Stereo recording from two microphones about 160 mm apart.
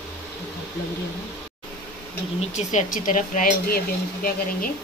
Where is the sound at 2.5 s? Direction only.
50° left (ahead or behind); by 4.7 s 65° left (ahead or behind).